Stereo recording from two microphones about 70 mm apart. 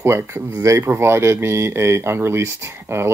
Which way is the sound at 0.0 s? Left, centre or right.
Right.